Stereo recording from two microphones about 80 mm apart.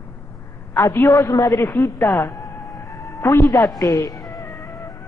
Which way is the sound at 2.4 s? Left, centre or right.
Left.